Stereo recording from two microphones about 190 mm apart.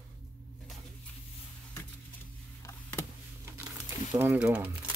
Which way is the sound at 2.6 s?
10° left (ahead or behind).